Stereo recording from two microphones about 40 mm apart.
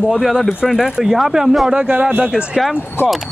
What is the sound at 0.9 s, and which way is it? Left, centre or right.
Speech, centre.